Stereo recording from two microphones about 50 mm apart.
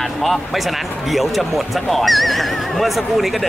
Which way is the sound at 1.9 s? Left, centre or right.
Centre.